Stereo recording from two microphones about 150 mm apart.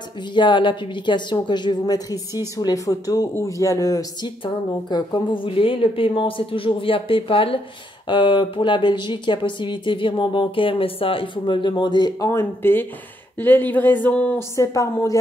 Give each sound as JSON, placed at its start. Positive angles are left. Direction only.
{"t": 0.3, "sound": "a woman's voice", "side_deg": 30}
{"t": 12.3, "sound": "speech", "side_deg": 15}
{"t": 14.6, "sound": "a woman's voice", "side_deg": 20}